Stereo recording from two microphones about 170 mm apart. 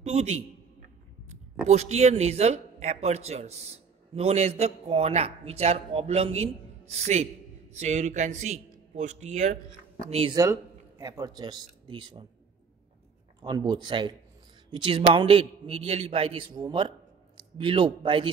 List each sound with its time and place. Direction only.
0.0 s a man's voice: 40° right (ahead or behind)
1.7 s speech: 40° right (ahead or behind)
10.3 s speech: 20° right (ahead or behind)
13.4 s speech: 25° right (ahead or behind)